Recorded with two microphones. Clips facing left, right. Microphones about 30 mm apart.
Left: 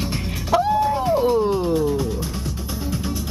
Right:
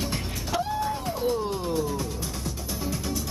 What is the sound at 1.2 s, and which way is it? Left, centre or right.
Music, left.